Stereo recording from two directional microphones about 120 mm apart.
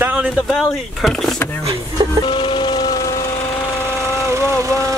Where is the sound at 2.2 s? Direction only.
45° left (ahead or behind).